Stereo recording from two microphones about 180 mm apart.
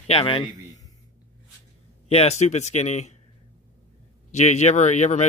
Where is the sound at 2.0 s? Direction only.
35° left (ahead or behind).